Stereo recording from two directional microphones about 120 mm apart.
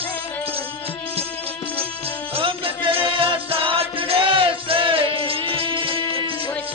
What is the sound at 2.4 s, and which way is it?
Music, 45° right (ahead or behind).